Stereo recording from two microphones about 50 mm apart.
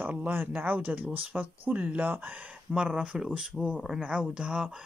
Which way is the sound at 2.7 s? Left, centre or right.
Centre.